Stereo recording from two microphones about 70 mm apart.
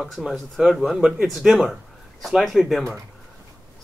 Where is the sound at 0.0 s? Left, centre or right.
Centre.